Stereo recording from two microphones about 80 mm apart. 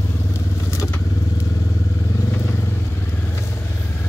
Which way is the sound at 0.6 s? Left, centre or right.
Left.